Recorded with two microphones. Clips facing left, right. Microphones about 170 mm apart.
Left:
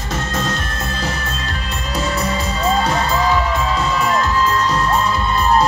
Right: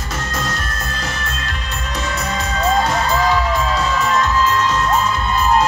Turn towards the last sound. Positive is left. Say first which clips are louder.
# even
turn(degrees=35)  # may be behind; listen again after turning